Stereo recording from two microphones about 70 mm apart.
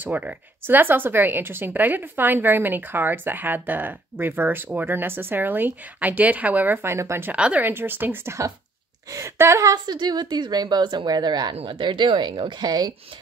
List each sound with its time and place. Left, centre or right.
0.0 s speech: right
7.3 s speech: centre
7.6 s speech: right
9.1 s speech: right
9.7 s a woman's voice: right